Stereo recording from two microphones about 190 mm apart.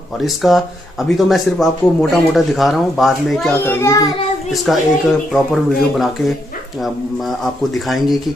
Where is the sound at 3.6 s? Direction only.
15° left (ahead or behind).